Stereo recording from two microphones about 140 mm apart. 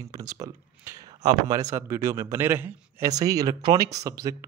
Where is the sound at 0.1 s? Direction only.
25° right (ahead or behind).